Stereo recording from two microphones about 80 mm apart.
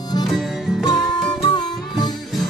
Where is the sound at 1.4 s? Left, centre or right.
Left.